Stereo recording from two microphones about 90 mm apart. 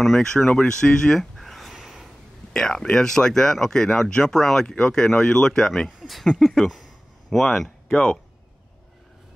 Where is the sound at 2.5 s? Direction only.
5° left (ahead or behind).